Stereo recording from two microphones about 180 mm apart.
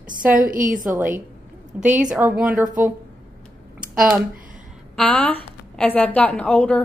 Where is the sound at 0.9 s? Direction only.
10° right (ahead or behind).